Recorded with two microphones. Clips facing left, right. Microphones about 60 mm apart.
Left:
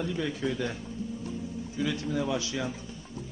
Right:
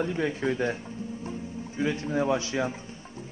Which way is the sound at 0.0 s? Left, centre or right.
Right.